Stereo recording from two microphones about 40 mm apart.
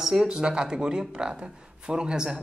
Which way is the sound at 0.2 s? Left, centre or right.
Right.